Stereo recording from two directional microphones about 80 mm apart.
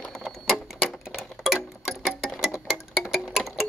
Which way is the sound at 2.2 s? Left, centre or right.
Centre.